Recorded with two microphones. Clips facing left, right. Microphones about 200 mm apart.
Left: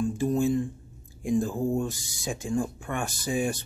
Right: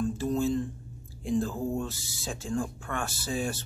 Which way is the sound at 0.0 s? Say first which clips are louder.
Left 3 dB; 15° left (ahead or behind).